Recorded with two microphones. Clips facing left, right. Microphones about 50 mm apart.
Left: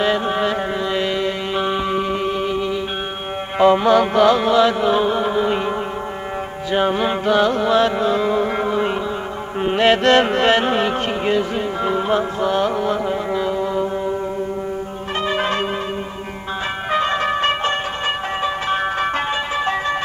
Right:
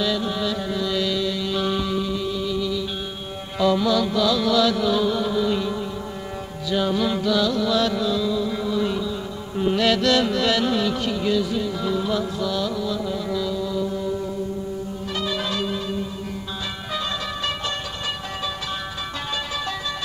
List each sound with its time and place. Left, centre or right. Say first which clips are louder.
0.0 s music: left 6 dB; left
3.5 s mantra: left 7 dB; left
6.7 s music: left 4 dB; left
9.6 s carnatic music: left 4 dB; left
15.2 s change ringing: left 7 dB; left
16.9 s music: left 10 dB; left